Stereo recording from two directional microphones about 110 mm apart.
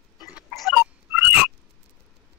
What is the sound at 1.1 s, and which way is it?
Frog, 15° right (ahead or behind).